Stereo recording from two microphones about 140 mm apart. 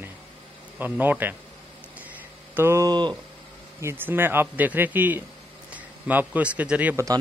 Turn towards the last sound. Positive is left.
turn(degrees=-10)  # may be behind; listen again after turning